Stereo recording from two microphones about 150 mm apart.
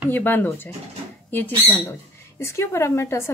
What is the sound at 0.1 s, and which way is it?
Speech, 10° left (ahead or behind).